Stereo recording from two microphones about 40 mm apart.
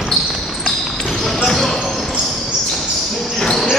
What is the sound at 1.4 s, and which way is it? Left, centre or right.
Basketball bounce, centre.